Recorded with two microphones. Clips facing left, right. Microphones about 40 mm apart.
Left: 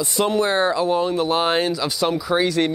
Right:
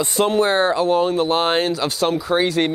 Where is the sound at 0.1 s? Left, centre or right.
Right.